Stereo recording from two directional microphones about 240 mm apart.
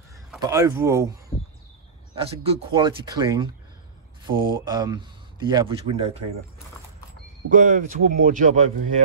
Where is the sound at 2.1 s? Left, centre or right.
Right.